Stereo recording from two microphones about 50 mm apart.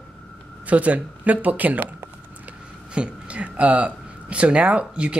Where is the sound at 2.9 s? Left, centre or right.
Right.